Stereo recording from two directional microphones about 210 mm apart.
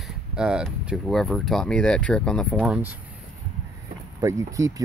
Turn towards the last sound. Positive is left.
turn(degrees=-15)  # may be behind; listen again after turning